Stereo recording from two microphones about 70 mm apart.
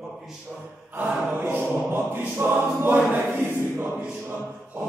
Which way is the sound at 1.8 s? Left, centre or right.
Right.